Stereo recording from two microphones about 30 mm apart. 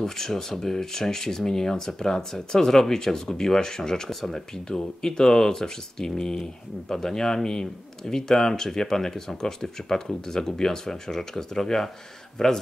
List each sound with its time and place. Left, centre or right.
0.0 s speech: centre
4.1 s speech: centre
4.6 s speech: centre